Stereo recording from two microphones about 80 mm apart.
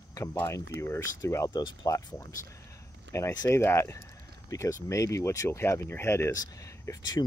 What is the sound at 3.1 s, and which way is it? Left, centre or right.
Speech, left.